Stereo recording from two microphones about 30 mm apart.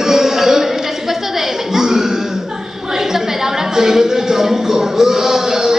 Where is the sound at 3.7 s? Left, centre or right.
Centre.